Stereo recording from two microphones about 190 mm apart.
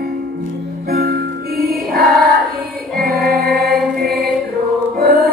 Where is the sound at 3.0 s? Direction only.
55° right (ahead or behind).